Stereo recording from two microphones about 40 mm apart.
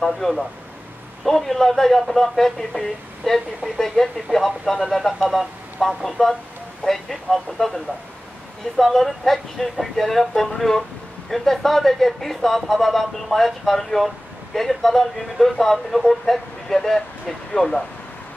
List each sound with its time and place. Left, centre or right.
0.2 s speech: centre